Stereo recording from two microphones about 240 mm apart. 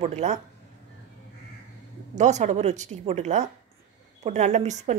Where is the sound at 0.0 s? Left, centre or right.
Right.